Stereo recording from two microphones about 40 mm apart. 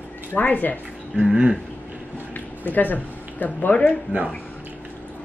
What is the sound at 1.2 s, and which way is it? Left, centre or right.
Speech, right.